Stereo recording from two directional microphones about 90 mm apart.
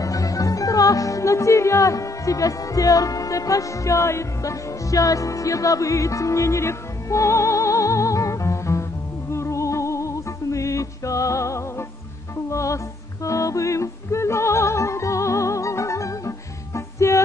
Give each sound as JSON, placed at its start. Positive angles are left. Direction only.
{"t": 0.0, "sound": "music", "side_deg": 40}